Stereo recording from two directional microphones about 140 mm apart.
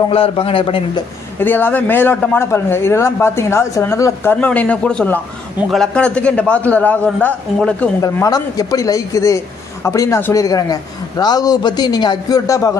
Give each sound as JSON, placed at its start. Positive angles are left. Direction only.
{"t": 0.1, "sound": "a man's voice", "side_deg": 40}
{"t": 1.4, "sound": "speech", "side_deg": 15}
{"t": 8.0, "sound": "a man's voice", "side_deg": 25}